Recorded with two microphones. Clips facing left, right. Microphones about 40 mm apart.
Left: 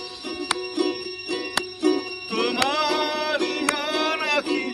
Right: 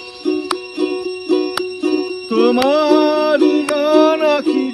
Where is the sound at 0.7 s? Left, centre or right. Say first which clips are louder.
Right 6 dB; right.